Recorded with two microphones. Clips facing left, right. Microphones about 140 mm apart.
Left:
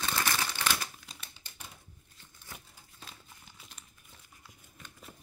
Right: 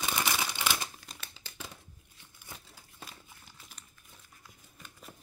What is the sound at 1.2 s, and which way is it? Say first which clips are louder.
Typewriter: right 4 dB; 90° right.